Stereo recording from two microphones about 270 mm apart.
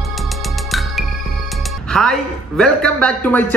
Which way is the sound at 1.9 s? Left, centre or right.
Centre.